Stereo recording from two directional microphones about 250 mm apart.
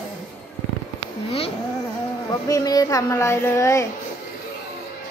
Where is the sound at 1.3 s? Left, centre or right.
Left.